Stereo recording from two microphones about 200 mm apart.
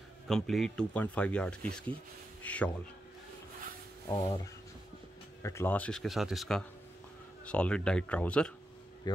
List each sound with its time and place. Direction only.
0.3 s a man's voice: centre (ahead or behind)
4.1 s a man's voice: 20° left (ahead or behind)
5.4 s speech: 15° left (ahead or behind)
9.1 s speech: 20° left (ahead or behind)